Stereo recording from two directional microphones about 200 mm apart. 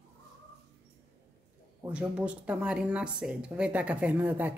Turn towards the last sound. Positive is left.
turn(degrees=-10)  # may be behind; listen again after turning